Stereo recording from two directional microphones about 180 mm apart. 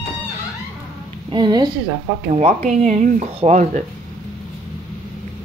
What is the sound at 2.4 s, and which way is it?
Speech, 35° right (ahead or behind).